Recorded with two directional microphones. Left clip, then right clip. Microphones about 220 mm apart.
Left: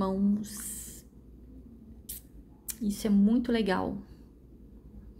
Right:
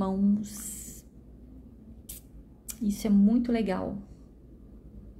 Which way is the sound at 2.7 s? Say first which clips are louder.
Right 2 dB; centre (ahead or behind).